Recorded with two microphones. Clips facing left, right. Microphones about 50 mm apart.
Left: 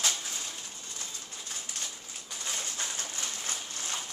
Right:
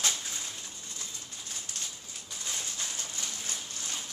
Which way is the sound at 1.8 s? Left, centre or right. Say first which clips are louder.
Left 1 dB; left.